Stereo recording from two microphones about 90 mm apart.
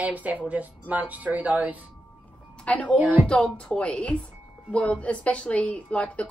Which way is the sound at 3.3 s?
10° left (ahead or behind).